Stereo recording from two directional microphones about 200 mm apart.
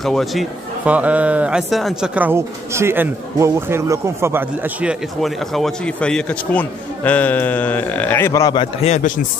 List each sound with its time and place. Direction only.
0.0 s a man's voice: centre (ahead or behind); by 8.6 s 20° left (ahead or behind)
8.8 s a man's voice: 40° left (ahead or behind)